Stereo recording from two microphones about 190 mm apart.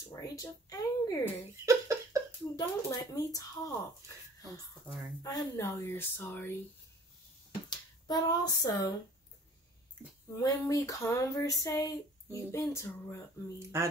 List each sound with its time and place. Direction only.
0.1 s speech: 20° left (ahead or behind)
1.2 s speech: 15° right (ahead or behind)
2.5 s speech: 20° left (ahead or behind)
5.2 s speech: 20° left (ahead or behind)
8.1 s speech: 20° left (ahead or behind)
10.3 s speech: 15° left (ahead or behind)
13.7 s speech: 15° right (ahead or behind)